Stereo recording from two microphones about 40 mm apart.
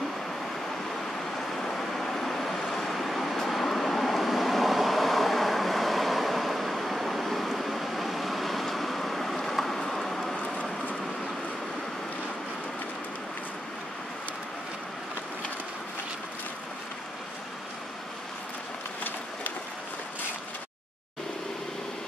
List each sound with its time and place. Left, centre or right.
1.6 s vehicle: centre
10.4 s vehicle: left